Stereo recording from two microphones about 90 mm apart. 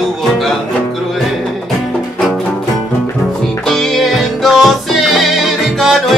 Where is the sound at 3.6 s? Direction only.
5° left (ahead or behind).